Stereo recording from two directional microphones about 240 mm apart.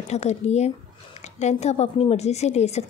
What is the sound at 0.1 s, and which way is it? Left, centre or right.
Speech, left.